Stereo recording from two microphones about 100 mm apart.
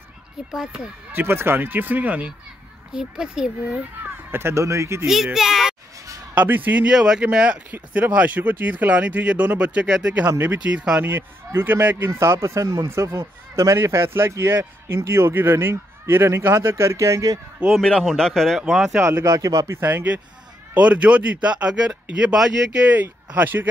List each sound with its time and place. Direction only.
0.5 s a man's voice: 5° right (ahead or behind)
1.1 s a man's voice: 20° right (ahead or behind)
4.0 s speech: 20° right (ahead or behind)
5.0 s a man's voice: 5° right (ahead or behind)
6.3 s a man's voice: 20° right (ahead or behind); by 17.4 s 35° right (ahead or behind)
17.6 s a man's voice: 5° right (ahead or behind)
17.8 s a man's voice: 5° left (ahead or behind)
19.2 s speech: 35° right (ahead or behind)
19.8 s a man's voice: 20° right (ahead or behind)